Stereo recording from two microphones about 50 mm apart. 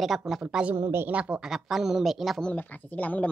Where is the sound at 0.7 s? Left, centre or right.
Right.